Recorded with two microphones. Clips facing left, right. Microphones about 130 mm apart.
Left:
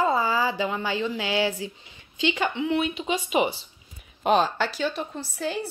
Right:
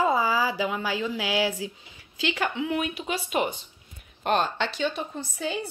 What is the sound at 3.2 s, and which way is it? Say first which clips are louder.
Speech: left 3 dB; 5° left (ahead or behind).